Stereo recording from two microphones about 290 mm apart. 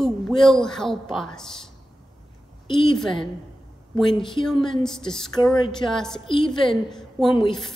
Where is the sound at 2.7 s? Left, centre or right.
Centre.